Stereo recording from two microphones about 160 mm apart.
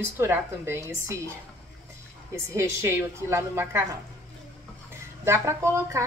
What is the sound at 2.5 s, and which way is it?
Speech, 15° right (ahead or behind).